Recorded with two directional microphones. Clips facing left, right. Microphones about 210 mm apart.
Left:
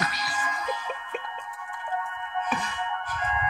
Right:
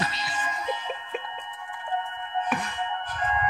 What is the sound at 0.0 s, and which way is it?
Music, 25° right (ahead or behind).